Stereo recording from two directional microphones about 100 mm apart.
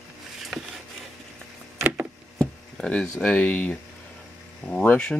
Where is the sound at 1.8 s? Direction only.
15° right (ahead or behind).